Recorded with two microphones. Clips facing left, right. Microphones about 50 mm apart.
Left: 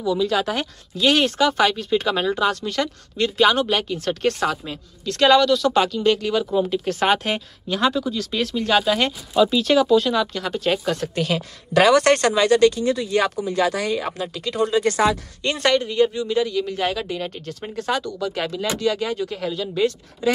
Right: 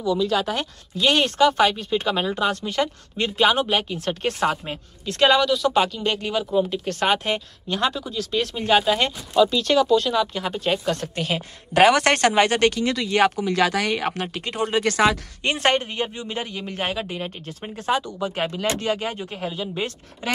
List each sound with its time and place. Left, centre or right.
0.0 s speech: centre
8.5 s speech: centre
8.8 s speech: centre
9.3 s speech: centre
10.3 s speech: centre
11.0 s speech: centre
11.7 s a man's voice: right
12.7 s speech: right
15.4 s a man's voice: right
17.1 s speech: right